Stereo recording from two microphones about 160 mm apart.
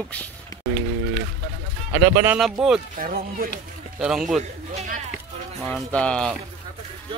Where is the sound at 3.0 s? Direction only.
60° right (ahead or behind).